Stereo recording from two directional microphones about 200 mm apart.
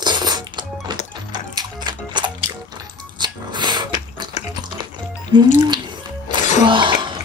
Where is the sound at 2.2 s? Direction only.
20° right (ahead or behind).